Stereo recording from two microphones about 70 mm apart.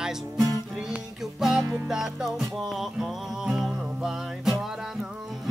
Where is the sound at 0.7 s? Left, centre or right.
Centre.